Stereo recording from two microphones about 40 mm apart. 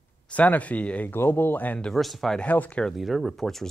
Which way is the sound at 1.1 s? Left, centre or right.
Left.